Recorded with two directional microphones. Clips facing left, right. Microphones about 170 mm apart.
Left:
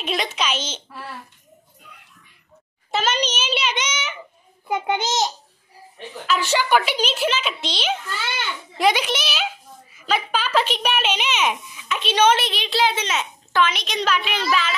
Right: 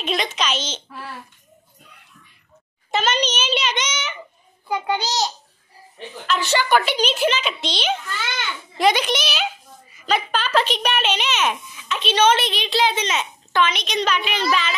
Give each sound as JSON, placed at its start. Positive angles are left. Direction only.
{"t": 0.0, "sound": "a woman's voice", "side_deg": 10}
{"t": 2.9, "sound": "a sound", "side_deg": 5}
{"t": 4.6, "sound": "babbling", "side_deg": 20}
{"t": 6.2, "sound": "a child's voice", "side_deg": 5}